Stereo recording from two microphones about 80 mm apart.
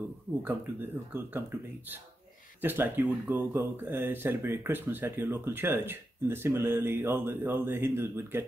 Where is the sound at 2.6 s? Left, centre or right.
Right.